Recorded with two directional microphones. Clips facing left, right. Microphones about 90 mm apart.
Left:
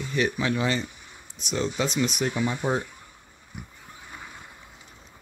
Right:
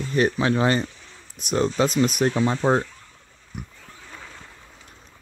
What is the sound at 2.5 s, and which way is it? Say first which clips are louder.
Speech: right 6 dB; 75° right (ahead or behind).